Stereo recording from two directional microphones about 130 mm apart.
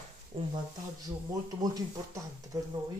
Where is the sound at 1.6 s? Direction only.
30° right (ahead or behind).